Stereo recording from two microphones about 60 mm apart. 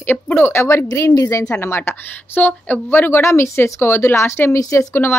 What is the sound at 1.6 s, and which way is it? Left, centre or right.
Speech, left.